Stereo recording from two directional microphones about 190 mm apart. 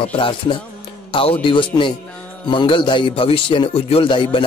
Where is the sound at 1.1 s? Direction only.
30° left (ahead or behind).